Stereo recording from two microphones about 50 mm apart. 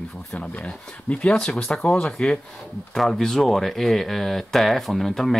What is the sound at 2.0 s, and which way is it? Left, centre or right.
Speech, centre.